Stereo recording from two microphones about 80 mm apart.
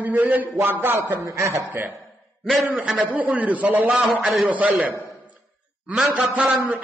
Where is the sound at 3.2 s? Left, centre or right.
Centre.